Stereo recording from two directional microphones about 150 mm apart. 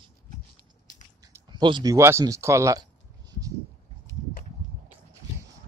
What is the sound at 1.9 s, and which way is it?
Speech, 20° right (ahead or behind).